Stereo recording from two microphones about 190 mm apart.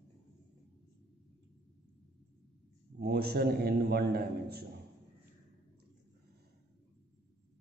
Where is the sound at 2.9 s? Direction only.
55° right (ahead or behind).